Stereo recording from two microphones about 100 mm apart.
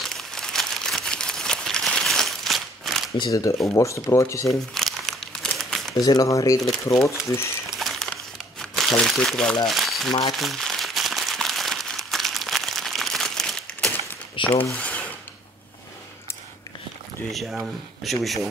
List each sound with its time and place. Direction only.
0.1 s crumpling: 5° left (ahead or behind)
3.3 s speech: 35° left (ahead or behind)
4.5 s crumpling: centre (ahead or behind)
5.9 s speech: 40° left (ahead or behind)
7.7 s a sound: centre (ahead or behind)
8.5 s speech: 5° left (ahead or behind)
10.3 s crumpling: centre (ahead or behind)
14.5 s speech: 15° left (ahead or behind)
17.3 s speech: centre (ahead or behind)